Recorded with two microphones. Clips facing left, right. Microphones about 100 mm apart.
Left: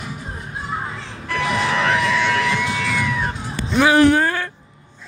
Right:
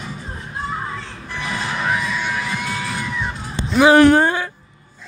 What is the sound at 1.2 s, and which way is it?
Music, 85° left.